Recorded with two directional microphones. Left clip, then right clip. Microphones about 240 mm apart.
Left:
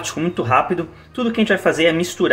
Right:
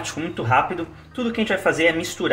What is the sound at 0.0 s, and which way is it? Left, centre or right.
Speech, left.